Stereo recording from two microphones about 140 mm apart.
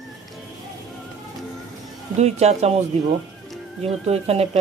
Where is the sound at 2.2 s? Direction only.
50° right (ahead or behind).